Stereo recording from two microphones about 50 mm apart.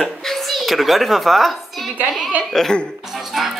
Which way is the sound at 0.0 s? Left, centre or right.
Centre.